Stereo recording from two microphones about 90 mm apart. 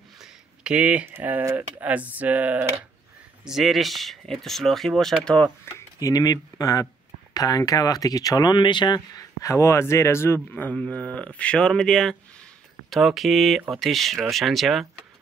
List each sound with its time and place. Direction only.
0.2 s a sound: 15° right (ahead or behind)
1.1 s speech: 20° right (ahead or behind)
1.4 s speech: 35° right (ahead or behind)
1.8 s speech: 15° right (ahead or behind)
3.4 s speech: 5° right (ahead or behind)
5.9 s speech: 45° left (ahead or behind)
9.4 s speech: 35° left (ahead or behind); by 14.9 s centre (ahead or behind)